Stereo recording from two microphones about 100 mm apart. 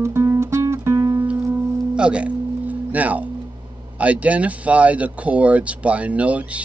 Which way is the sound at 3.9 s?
15° right (ahead or behind).